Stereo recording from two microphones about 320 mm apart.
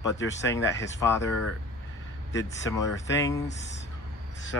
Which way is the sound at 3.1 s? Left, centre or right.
Centre.